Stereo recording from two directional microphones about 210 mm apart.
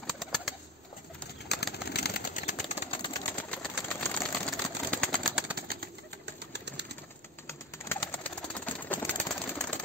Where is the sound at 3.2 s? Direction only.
5° left (ahead or behind).